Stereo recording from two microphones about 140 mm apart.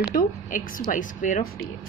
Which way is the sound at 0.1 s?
75° left (ahead or behind).